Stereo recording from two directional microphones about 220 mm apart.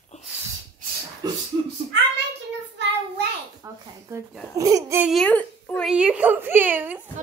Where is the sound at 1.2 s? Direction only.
15° right (ahead or behind).